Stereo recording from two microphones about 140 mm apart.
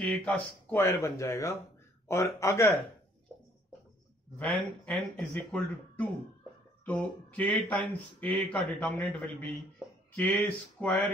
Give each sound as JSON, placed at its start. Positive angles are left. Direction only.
{"t": 0.0, "sound": "speech", "side_deg": 10}
{"t": 4.4, "sound": "speech", "side_deg": 5}